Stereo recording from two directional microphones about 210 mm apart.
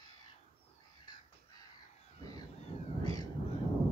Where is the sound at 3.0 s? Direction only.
20° left (ahead or behind).